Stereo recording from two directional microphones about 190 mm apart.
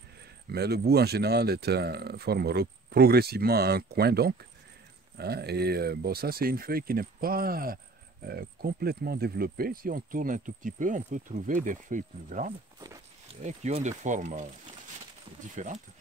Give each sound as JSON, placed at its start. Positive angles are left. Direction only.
{"t": 0.5, "sound": "speech", "side_deg": -55}
{"t": 15.5, "sound": "speech", "side_deg": -40}